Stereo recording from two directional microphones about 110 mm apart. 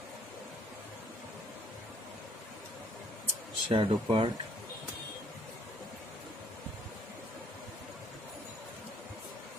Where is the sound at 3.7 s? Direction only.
50° right (ahead or behind).